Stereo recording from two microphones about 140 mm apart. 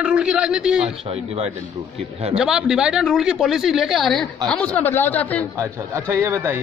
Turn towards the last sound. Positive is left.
turn(degrees=-20)  # may be behind; listen again after turning